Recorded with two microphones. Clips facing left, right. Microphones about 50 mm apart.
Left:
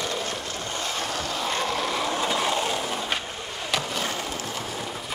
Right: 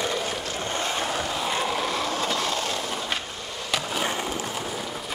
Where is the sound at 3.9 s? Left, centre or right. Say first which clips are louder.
Right 2 dB; centre.